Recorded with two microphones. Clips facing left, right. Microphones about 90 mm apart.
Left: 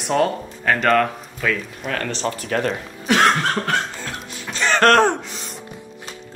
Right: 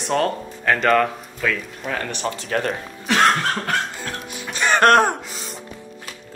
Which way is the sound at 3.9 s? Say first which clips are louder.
Right 1 dB; 15° right (ahead or behind).